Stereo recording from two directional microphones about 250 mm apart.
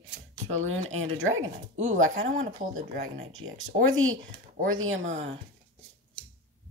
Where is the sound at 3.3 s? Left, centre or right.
Right.